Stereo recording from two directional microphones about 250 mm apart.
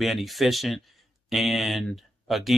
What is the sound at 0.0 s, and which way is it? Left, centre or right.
Speech, centre.